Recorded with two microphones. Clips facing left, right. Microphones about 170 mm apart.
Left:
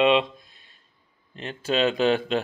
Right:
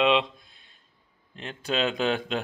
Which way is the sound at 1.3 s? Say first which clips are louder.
Left 4 dB; centre (ahead or behind).